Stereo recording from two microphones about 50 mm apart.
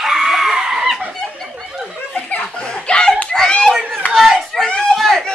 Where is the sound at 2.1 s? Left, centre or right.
Left.